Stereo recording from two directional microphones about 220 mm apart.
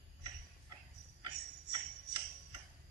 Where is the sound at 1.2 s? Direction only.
20° right (ahead or behind).